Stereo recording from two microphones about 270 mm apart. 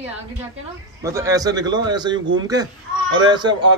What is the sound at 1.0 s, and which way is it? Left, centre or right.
A man's voice, centre.